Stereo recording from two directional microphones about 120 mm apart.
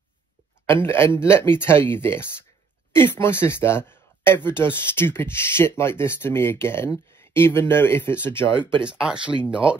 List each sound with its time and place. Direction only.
0.7 s speech: 20° left (ahead or behind)
8.8 s speech: 5° right (ahead or behind)